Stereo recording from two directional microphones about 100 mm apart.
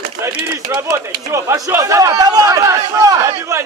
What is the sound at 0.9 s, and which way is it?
A man's voice, 30° right (ahead or behind).